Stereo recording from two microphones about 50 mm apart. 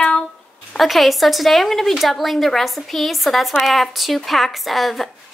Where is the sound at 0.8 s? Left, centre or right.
Centre.